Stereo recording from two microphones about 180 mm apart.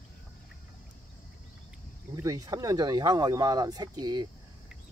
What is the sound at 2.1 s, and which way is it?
Speech, 20° right (ahead or behind).